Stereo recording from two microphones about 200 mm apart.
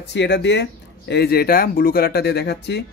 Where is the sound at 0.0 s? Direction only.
60° left (ahead or behind).